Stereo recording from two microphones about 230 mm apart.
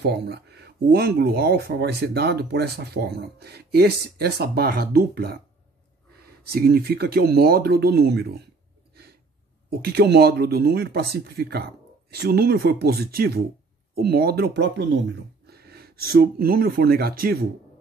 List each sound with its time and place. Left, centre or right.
0.0 s speech: right
6.5 s speech: right
9.7 s speech: right